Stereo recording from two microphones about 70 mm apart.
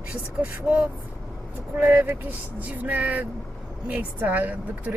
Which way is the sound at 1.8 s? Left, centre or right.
Right.